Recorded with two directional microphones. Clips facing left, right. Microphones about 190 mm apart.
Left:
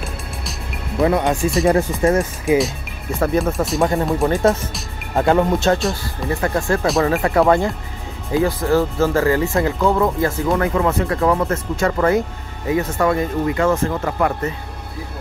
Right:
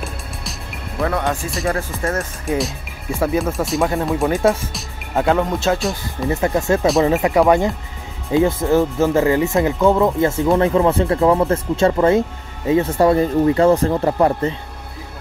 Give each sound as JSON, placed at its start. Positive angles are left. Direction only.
{"t": 1.0, "sound": "speech", "side_deg": 15}
{"t": 2.4, "sound": "speech", "side_deg": 0}
{"t": 6.2, "sound": "speech", "side_deg": -20}